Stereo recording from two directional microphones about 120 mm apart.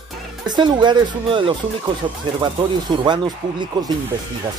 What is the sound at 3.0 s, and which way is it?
Speech, 40° right (ahead or behind).